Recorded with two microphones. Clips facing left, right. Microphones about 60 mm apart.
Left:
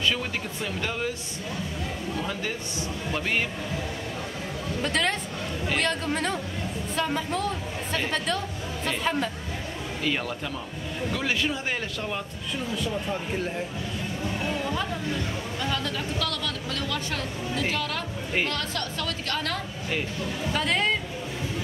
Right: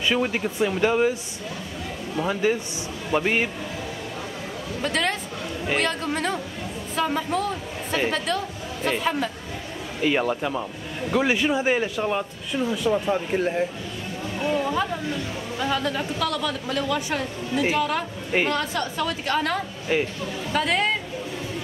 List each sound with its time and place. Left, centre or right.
0.0 s speech: centre
2.4 s speech: centre
4.8 s a woman's voice: centre
10.0 s speech: centre
14.4 s speech: centre
20.5 s speech: centre